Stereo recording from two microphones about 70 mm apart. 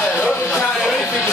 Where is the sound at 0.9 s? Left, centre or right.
Left.